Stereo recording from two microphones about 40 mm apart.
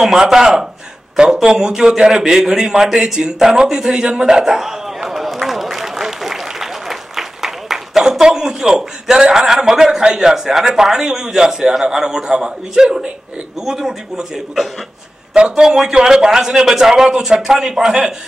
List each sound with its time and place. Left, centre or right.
0.0 s a man's voice: centre
3.7 s a sound: centre
8.0 s a man's voice: centre
15.3 s a man's voice: centre